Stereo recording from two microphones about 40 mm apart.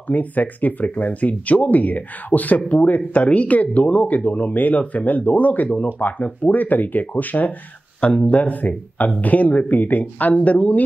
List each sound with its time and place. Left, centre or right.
0.1 s speech: left
8.0 s speech: left